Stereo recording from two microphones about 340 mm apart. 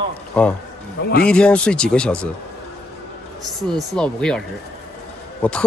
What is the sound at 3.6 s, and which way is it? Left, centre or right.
Speech, centre.